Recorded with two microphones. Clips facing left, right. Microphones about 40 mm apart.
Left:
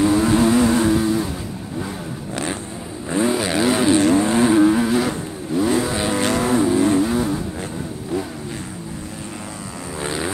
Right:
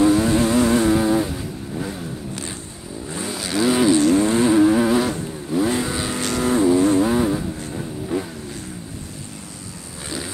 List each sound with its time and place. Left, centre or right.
0.0 s vehicle: centre
3.1 s vehicle: left
4.6 s vehicle: centre
5.9 s vehicle: centre
7.0 s vehicle: centre
10.0 s vehicle: left